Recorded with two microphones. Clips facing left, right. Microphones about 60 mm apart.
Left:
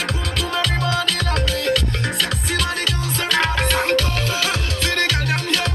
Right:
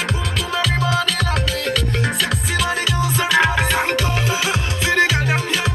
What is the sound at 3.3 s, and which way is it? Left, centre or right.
Music, centre.